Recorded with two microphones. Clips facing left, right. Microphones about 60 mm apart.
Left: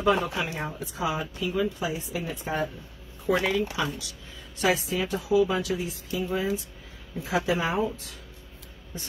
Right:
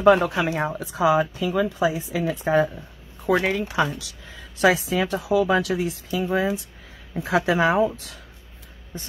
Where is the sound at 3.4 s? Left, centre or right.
Right.